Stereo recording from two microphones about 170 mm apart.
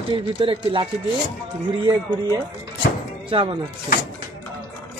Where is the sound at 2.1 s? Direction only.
25° right (ahead or behind).